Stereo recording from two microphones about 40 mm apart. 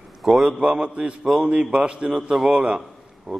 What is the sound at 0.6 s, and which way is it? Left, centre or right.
A man's voice, right.